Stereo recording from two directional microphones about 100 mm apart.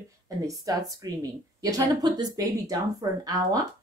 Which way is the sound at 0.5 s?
35° right (ahead or behind).